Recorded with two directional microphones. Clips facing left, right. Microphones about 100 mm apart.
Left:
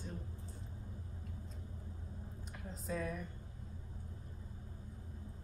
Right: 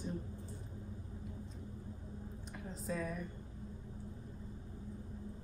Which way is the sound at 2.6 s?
Centre (ahead or behind).